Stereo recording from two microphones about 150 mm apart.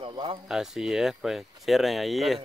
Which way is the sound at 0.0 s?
35° right (ahead or behind).